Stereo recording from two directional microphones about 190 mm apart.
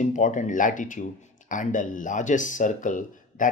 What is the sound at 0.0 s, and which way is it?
Speech, 40° left (ahead or behind).